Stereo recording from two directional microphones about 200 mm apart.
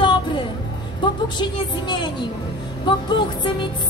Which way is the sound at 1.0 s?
25° left (ahead or behind).